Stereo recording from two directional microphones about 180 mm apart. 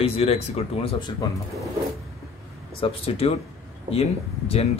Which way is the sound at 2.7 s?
30° left (ahead or behind).